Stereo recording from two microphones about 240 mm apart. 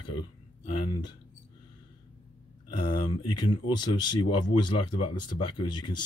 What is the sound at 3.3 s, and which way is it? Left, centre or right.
Speech, centre.